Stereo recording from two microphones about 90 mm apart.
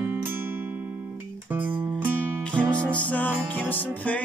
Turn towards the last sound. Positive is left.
turn(degrees=20)  # may be behind; listen again after turning